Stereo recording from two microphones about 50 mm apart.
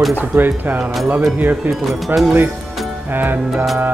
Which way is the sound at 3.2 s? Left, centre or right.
Right.